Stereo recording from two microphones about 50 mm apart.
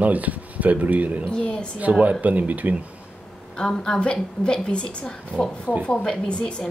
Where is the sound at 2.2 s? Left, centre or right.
Right.